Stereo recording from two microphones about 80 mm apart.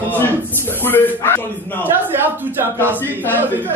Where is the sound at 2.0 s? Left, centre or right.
Right.